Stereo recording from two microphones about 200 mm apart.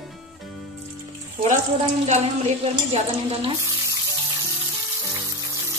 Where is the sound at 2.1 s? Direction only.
35° right (ahead or behind).